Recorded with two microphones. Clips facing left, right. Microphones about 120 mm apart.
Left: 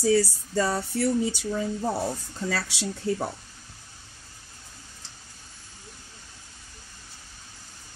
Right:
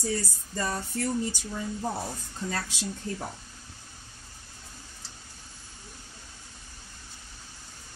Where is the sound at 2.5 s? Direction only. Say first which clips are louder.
Left 4 dB; 85° left.